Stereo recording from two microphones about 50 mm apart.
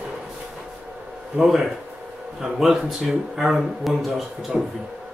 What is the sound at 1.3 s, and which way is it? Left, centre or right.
Speech, centre.